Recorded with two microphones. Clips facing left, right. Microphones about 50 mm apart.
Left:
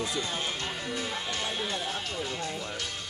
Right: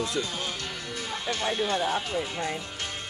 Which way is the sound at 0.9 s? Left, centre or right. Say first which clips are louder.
Right 3 dB; centre.